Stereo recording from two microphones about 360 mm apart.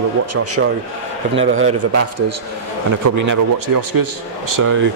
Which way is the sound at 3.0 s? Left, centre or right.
Right.